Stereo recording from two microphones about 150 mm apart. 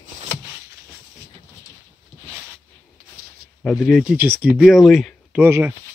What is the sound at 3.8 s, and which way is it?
Speech, centre (ahead or behind).